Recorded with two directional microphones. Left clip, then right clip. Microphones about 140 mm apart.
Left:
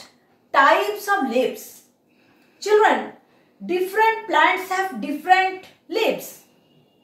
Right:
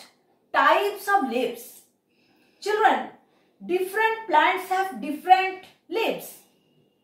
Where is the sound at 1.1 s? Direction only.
10° left (ahead or behind).